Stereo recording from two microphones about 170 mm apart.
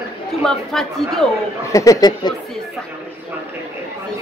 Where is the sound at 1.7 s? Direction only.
20° left (ahead or behind).